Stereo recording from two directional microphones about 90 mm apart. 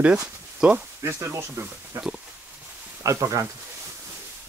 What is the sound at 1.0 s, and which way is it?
Speech, 30° right (ahead or behind).